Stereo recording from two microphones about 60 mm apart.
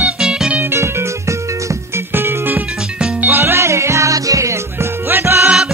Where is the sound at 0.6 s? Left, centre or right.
Right.